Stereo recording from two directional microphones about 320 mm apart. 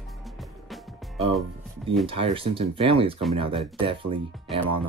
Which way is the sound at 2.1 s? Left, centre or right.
Centre.